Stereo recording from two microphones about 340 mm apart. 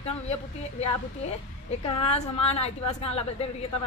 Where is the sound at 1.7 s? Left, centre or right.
Centre.